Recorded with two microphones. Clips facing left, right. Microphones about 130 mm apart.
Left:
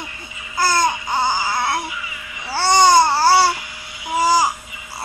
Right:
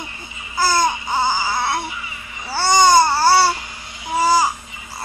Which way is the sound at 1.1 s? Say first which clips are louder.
Even; 5° right (ahead or behind).